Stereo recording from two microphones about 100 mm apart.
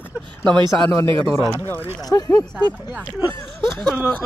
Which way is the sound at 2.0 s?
40° left (ahead or behind).